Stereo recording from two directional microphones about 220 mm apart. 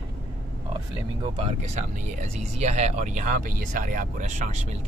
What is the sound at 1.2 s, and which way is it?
Speech, 30° right (ahead or behind).